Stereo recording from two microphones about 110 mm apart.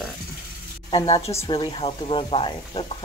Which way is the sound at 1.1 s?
70° left (ahead or behind).